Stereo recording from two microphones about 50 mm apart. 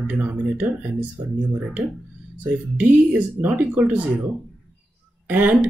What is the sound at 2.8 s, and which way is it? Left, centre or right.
Speech, right.